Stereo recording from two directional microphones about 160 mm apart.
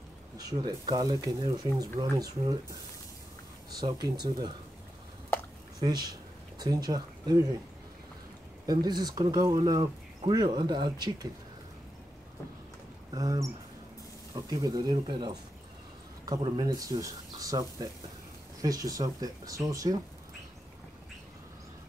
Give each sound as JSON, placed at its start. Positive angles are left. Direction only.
{"t": 0.4, "sound": "speech", "side_deg": -25}
{"t": 3.8, "sound": "speech", "side_deg": -25}
{"t": 5.8, "sound": "speech", "side_deg": -25}
{"t": 8.6, "sound": "speech", "side_deg": -25}
{"t": 13.1, "sound": "speech", "side_deg": -20}